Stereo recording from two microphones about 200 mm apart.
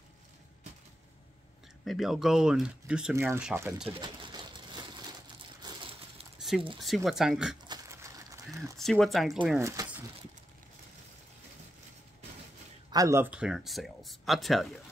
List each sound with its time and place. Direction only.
1.9 s speech: centre (ahead or behind)
4.0 s a sound: 20° right (ahead or behind)
5.6 s crumpling: 20° right (ahead or behind)
6.4 s a sound: centre (ahead or behind)
7.1 s speech: centre (ahead or behind)
7.6 s a sound: 20° right (ahead or behind)
8.7 s speech: centre (ahead or behind)
9.6 s speech: 15° right (ahead or behind)
12.9 s speech: 15° right (ahead or behind)